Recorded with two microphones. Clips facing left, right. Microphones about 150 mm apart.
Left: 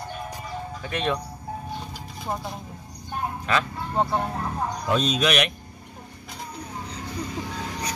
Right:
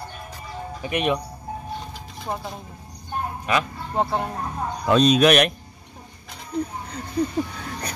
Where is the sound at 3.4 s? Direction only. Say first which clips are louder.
Right 2 dB; 15° right (ahead or behind).